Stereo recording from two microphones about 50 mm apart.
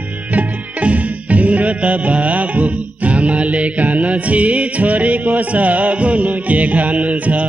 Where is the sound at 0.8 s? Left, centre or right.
Right.